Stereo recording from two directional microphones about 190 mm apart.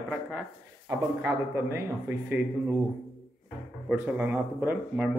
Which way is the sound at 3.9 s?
10° right (ahead or behind).